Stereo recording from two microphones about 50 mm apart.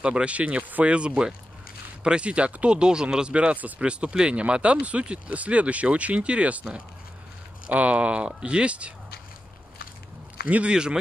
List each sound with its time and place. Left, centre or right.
0.0 s speech: right
3.8 s speech: right
7.7 s speech: right
10.5 s speech: centre